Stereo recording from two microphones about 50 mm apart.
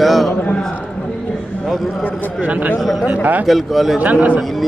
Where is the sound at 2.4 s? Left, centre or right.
Right.